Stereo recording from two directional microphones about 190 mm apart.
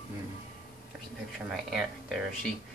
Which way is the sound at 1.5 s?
Centre (ahead or behind).